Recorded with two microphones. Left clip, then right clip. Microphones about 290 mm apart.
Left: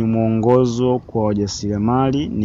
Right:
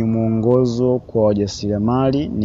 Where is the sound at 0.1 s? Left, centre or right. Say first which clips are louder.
Left 2 dB; centre.